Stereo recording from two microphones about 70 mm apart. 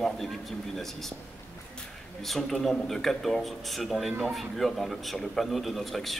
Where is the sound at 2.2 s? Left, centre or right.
Centre.